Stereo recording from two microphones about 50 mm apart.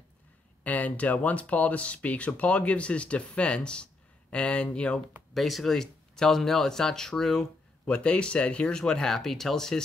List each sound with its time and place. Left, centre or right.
0.7 s speech: left
5.3 s speech: centre
7.8 s speech: left